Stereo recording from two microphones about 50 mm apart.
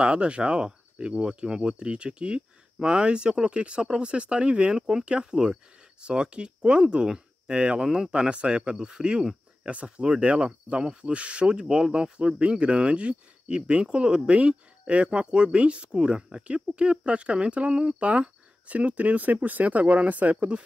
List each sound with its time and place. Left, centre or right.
0.0 s speech: right
9.2 s cricket: centre
9.7 s speech: right